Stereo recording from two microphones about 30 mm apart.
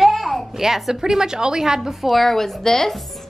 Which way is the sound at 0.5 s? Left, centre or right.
Centre.